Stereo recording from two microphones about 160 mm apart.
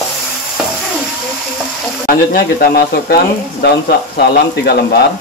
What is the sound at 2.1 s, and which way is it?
Speech, 65° left (ahead or behind).